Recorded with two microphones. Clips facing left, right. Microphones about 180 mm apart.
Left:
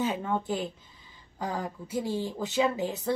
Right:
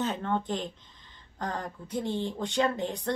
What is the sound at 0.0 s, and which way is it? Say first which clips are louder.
Speech: left 1 dB; 10° left (ahead or behind).